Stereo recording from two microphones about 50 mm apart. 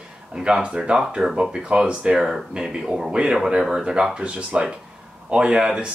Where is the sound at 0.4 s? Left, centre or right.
Centre.